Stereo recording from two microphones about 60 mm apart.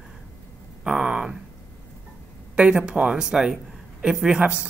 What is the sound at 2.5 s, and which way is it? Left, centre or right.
A woman's voice, centre.